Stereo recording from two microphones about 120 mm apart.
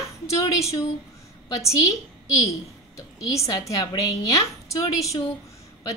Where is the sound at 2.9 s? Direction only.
25° left (ahead or behind).